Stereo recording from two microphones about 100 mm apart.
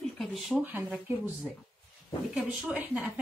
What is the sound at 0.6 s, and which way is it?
Speech, 15° right (ahead or behind).